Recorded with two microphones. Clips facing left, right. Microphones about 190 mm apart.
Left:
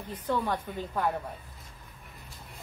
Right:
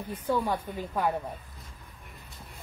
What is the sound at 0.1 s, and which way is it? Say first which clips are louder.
A woman's voice: right 1 dB; 10° right (ahead or behind).